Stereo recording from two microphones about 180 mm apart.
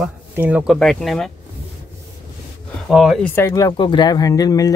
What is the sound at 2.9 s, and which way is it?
Speech, centre (ahead or behind).